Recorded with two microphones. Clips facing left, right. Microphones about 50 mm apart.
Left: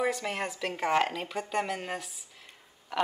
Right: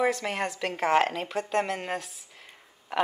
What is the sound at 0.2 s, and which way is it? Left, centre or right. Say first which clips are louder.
Speech: right 3 dB; centre.